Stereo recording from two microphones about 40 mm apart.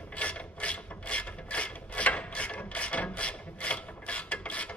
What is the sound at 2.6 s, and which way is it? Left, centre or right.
Filing, left.